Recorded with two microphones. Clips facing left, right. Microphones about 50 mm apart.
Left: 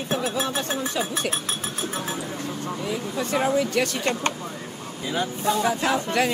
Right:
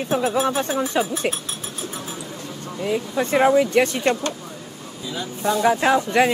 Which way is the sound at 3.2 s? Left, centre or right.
Right.